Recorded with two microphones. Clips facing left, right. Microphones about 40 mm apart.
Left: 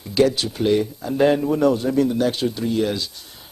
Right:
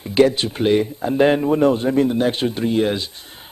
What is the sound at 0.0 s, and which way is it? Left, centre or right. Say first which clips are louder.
Speech: right 3 dB; right.